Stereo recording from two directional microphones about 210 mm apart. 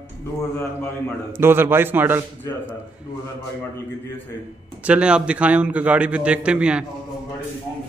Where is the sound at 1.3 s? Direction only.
10° right (ahead or behind).